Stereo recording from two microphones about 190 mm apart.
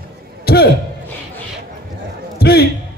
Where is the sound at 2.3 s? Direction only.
55° left (ahead or behind).